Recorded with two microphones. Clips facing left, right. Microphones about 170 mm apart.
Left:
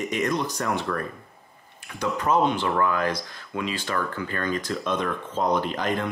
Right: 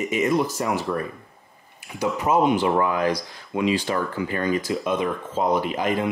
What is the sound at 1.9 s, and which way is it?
Speech, 10° right (ahead or behind).